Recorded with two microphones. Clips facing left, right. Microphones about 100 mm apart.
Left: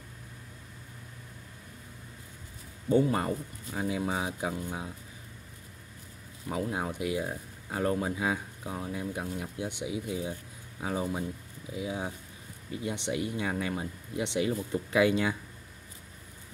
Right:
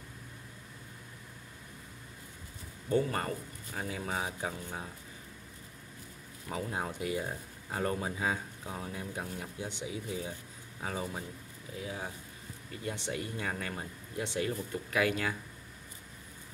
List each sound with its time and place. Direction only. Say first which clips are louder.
2.9 s speech: left 5 dB; 5° left (ahead or behind)
6.5 s speech: left 4 dB; 5° left (ahead or behind); by 15.3 s 20° left (ahead or behind)